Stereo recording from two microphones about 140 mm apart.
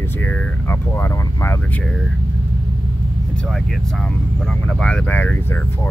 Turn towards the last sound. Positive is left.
turn(degrees=10)  # may be behind; listen again after turning